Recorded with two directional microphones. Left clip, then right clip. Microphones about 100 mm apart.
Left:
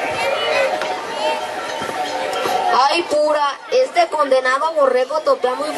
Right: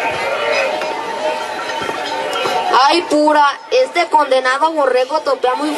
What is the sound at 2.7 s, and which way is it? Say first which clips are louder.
A woman's voice: right 4 dB; 20° right (ahead or behind).